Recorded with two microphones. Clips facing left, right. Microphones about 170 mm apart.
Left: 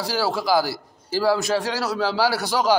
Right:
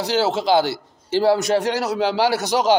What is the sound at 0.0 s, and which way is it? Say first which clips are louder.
A man's voice: right 4 dB; 20° right (ahead or behind).